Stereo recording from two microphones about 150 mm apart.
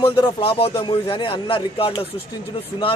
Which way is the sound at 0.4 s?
40° left (ahead or behind).